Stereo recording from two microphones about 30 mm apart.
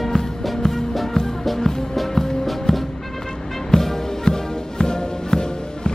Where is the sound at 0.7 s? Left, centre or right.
Centre.